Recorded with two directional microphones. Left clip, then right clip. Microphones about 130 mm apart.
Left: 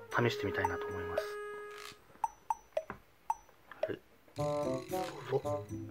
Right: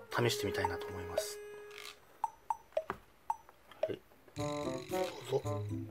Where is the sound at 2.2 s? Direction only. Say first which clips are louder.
Left 1 dB; centre (ahead or behind).